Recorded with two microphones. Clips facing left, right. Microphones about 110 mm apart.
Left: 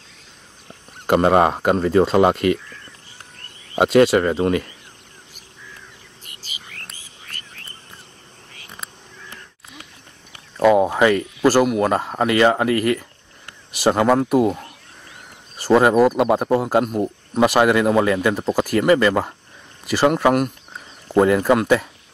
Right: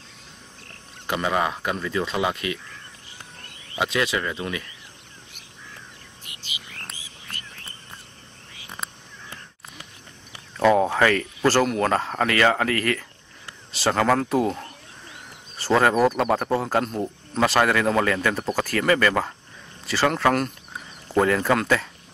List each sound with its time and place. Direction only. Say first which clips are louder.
1.0 s speech: left 9 dB; 50° left (ahead or behind)
3.8 s speech: left 11 dB; 50° left (ahead or behind)
6.2 s a sound: even; 45° left (ahead or behind)
10.6 s a man's voice: left 4 dB; 10° left (ahead or behind)